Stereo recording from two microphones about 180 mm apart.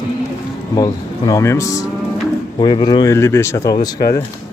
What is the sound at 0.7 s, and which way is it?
Speech, 20° left (ahead or behind).